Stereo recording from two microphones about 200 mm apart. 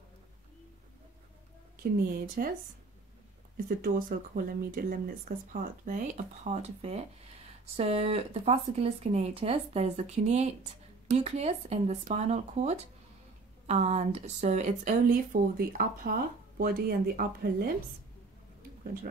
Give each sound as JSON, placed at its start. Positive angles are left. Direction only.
{"t": 1.8, "sound": "speech", "side_deg": -45}
{"t": 3.5, "sound": "speech", "side_deg": -45}